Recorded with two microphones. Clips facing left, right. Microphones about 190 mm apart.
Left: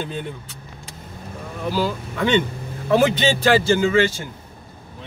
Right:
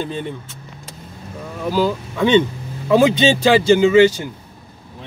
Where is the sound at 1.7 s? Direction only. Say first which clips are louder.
Right 5 dB; 15° right (ahead or behind).